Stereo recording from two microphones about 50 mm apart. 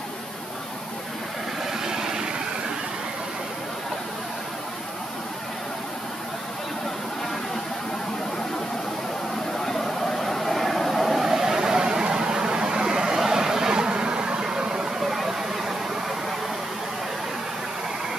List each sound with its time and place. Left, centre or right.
1.7 s vehicle: centre
9.7 s vehicle: centre
15.0 s a sound: centre